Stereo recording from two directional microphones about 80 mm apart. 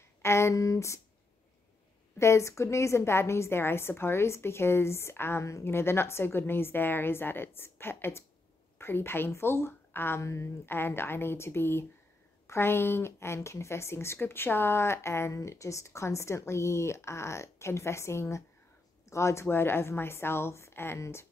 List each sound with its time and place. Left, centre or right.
0.2 s speech: left
2.1 s a woman's voice: left